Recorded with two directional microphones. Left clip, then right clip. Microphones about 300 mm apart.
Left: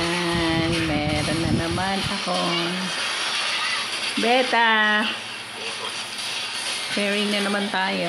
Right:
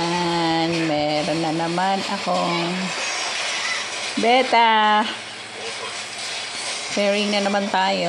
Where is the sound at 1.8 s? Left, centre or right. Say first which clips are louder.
Right 3 dB; centre.